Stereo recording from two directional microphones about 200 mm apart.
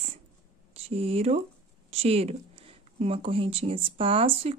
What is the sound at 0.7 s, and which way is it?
Speech, 30° right (ahead or behind).